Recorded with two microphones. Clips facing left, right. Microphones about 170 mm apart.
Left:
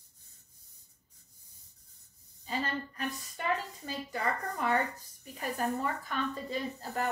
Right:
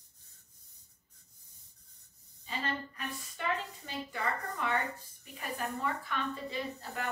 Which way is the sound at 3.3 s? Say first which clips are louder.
Left 1 dB; 40° left (ahead or behind).